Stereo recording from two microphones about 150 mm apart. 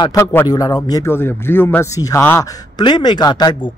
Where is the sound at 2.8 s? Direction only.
30° left (ahead or behind).